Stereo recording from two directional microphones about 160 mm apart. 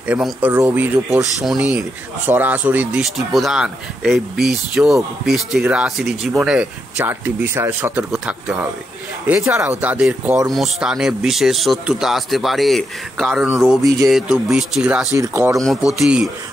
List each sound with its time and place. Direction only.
0.0 s speech: 10° right (ahead or behind)
15.1 s speech: 20° right (ahead or behind)
16.0 s speech: 5° right (ahead or behind)